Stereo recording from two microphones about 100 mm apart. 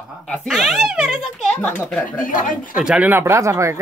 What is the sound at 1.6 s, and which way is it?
Speech, 15° left (ahead or behind).